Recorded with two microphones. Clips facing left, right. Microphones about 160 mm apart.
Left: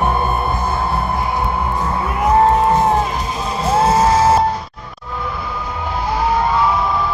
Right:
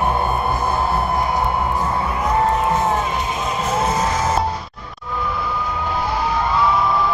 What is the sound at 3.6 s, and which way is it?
Music, 30° left (ahead or behind).